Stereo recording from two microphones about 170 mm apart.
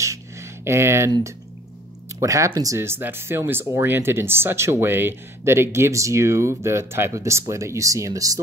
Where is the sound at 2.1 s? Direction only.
20° right (ahead or behind).